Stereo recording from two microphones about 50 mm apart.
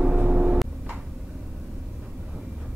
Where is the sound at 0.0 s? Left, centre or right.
Centre.